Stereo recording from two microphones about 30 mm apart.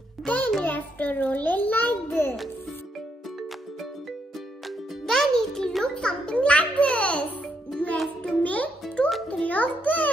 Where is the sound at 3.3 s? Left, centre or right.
Centre.